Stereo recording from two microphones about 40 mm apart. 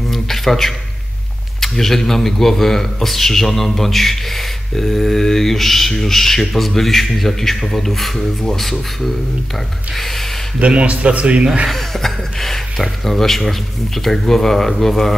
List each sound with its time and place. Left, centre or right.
0.1 s a sound: centre
1.6 s speech: centre
10.6 s a man's voice: right
11.7 s speech: centre